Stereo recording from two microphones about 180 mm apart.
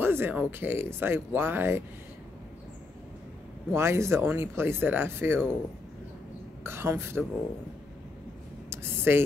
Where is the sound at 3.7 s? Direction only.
15° right (ahead or behind).